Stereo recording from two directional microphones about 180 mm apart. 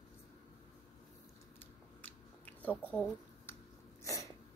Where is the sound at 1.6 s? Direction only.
10° left (ahead or behind).